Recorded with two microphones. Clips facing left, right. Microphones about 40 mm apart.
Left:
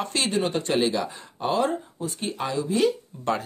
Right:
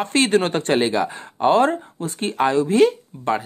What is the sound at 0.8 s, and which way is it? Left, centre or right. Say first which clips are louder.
Speech: right 5 dB; right.